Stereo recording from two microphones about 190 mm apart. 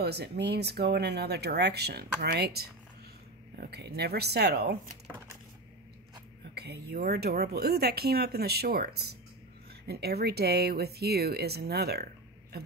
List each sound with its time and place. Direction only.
0.0 s speech: 60° right (ahead or behind)
6.5 s speech: 60° right (ahead or behind)